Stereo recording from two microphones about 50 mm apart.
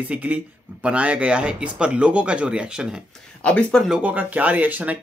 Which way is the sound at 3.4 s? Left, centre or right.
Left.